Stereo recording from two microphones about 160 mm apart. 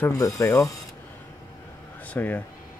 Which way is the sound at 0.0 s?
20° left (ahead or behind).